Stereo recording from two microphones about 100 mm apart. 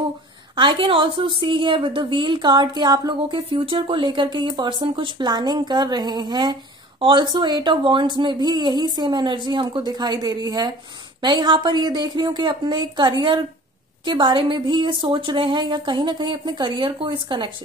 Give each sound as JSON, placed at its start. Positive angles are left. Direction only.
{"t": 0.6, "sound": "a woman's voice", "side_deg": -55}